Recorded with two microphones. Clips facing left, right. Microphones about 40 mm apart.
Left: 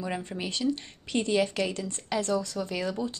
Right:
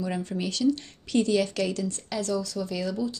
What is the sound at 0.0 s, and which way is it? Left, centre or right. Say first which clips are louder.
Speech: right 3 dB; left.